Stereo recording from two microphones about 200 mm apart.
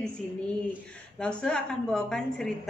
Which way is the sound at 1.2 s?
5° left (ahead or behind).